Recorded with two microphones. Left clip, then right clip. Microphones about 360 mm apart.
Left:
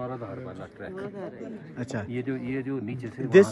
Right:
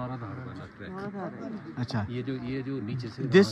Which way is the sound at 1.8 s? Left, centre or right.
Centre.